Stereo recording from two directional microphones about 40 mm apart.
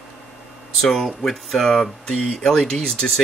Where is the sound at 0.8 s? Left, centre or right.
Centre.